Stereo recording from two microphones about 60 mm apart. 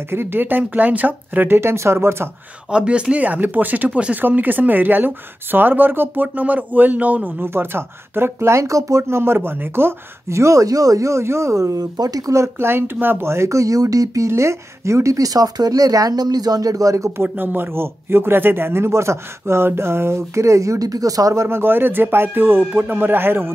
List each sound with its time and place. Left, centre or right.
0.1 s speech: right
1.6 s a man's voice: right
2.7 s speech: centre
7.4 s a man's voice: right
9.0 s speech: right
12.4 s a man's voice: right
14.2 s speech: right
17.2 s a man's voice: right
21.5 s speech: right